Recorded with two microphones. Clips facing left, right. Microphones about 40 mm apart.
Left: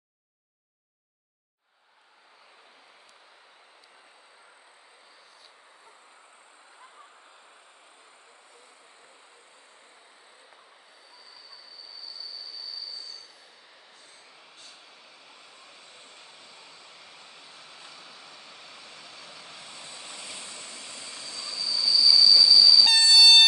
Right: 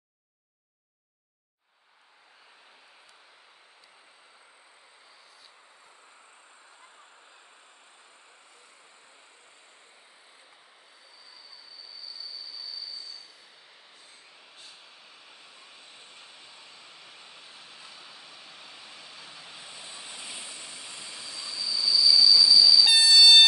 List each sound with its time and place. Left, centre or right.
15.6 s vehicle: centre